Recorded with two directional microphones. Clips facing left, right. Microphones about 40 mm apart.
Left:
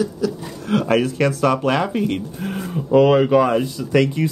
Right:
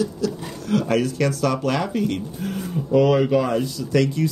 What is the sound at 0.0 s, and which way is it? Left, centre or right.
Speech, left.